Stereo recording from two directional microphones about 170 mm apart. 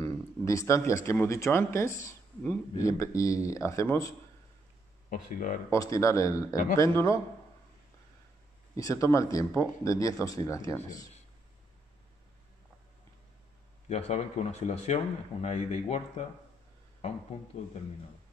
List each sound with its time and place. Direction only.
0.0 s speech: 20° left (ahead or behind)
5.1 s speech: 50° left (ahead or behind)
5.7 s speech: 20° left (ahead or behind)
6.5 s speech: 50° left (ahead or behind)
6.8 s a man's voice: 20° left (ahead or behind)
8.7 s speech: 20° left (ahead or behind)
13.8 s speech: 40° left (ahead or behind)